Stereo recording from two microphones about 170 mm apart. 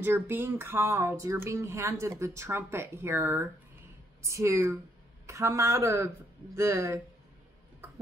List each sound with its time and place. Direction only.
0.0 s speech: 10° right (ahead or behind)